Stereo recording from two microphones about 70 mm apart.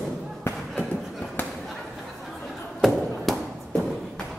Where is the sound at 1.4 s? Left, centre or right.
Left.